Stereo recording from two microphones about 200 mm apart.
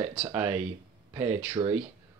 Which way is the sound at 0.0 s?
15° right (ahead or behind).